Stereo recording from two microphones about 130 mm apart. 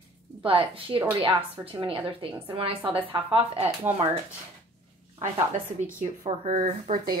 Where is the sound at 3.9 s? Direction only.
15° right (ahead or behind).